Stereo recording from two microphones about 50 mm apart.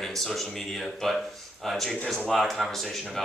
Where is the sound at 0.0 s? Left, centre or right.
Centre.